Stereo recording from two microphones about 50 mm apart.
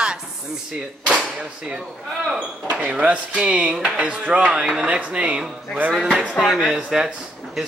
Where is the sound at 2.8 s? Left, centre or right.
Right.